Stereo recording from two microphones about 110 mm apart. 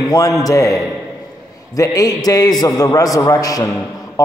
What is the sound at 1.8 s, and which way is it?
A man's voice, 35° left (ahead or behind).